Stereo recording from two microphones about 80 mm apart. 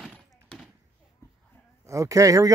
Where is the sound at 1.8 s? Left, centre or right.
Right.